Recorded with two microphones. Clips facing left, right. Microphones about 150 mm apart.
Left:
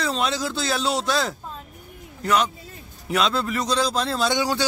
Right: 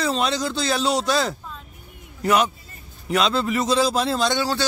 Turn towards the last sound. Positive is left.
turn(degrees=15)  # may be behind; listen again after turning